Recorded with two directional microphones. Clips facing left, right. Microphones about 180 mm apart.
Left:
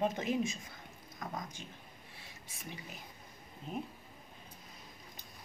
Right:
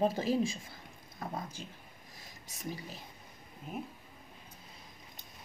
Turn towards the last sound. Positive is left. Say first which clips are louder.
# left 1 dB
turn(degrees=-5)  # may be behind; listen again after turning